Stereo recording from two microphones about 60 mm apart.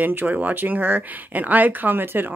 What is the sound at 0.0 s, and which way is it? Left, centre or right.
Speech, right.